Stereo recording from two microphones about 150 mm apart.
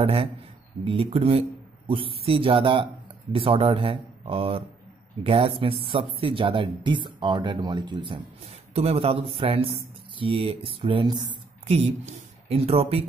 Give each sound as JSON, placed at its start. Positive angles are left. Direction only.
{"t": 0.0, "sound": "speech", "side_deg": -40}
{"t": 11.6, "sound": "speech", "side_deg": -45}